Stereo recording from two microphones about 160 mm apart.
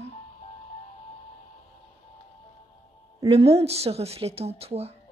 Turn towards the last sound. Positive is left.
turn(degrees=-40)  # may be behind; listen again after turning